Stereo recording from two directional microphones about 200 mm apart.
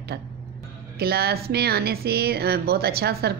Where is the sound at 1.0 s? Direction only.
50° right (ahead or behind).